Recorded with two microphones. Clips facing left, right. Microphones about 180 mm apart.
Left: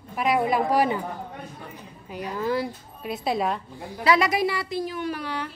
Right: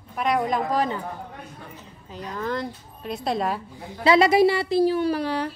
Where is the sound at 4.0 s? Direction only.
25° right (ahead or behind).